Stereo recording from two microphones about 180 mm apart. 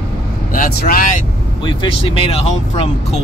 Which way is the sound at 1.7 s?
30° left (ahead or behind).